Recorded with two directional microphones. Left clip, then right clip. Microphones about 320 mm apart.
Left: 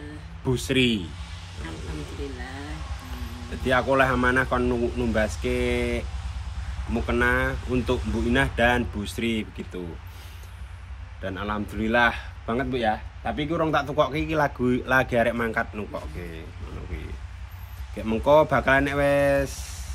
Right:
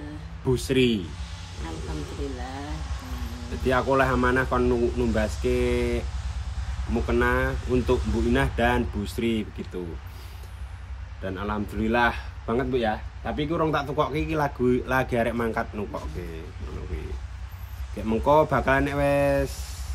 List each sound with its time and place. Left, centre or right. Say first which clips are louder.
0.5 s speech: even; centre
3.6 s speech: left 1 dB; centre
11.2 s speech: left 1 dB; centre
17.9 s speech: left 2 dB; centre